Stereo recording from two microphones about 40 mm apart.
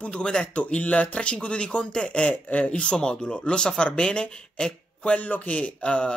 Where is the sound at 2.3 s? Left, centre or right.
Left; by 4.7 s centre.